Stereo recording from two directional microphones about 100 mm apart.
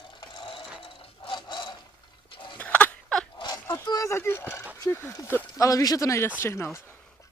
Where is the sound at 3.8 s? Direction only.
40° left (ahead or behind).